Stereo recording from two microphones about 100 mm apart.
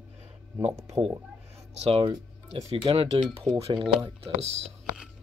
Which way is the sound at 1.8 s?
70° right (ahead or behind).